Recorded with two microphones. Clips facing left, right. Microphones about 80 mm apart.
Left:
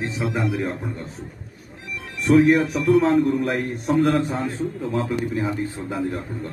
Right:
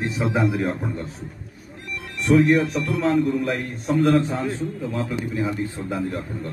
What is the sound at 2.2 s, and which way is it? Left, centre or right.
A man's voice, centre.